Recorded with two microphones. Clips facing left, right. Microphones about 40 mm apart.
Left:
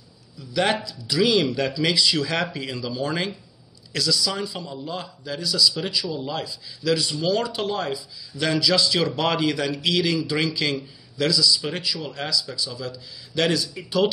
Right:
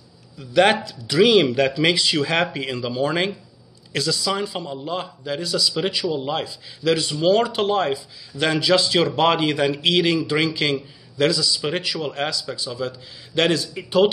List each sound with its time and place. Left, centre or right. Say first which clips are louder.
0.4 s a man's voice: right 6 dB; right